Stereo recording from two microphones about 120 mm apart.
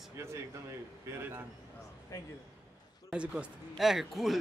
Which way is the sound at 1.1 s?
20° right (ahead or behind).